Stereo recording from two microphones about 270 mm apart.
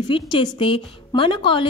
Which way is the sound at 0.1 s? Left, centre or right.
Centre.